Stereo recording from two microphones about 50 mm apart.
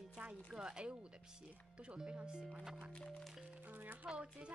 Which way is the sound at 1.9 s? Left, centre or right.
Centre.